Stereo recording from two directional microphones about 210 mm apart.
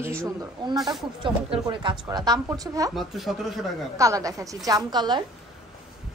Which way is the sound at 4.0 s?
15° right (ahead or behind).